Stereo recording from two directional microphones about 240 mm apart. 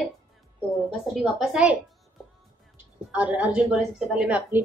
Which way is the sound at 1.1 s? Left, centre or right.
Centre.